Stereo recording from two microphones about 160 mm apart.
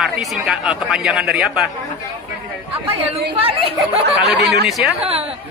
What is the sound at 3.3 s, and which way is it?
Speech, 35° right (ahead or behind).